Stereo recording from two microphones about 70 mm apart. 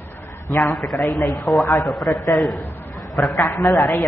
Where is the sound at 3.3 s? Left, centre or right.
Left.